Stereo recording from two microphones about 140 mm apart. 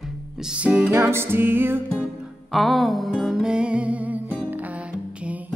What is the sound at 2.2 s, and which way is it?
Music, centre (ahead or behind).